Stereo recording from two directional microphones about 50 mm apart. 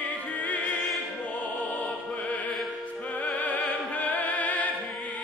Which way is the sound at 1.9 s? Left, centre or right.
Left.